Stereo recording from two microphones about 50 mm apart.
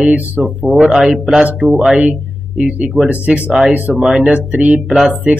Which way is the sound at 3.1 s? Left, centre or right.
Right.